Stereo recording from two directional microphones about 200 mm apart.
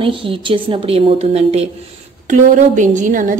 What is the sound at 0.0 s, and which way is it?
A woman's voice, 25° right (ahead or behind).